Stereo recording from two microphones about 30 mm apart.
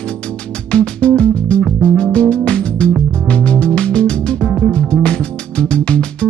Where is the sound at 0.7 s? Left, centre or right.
Left.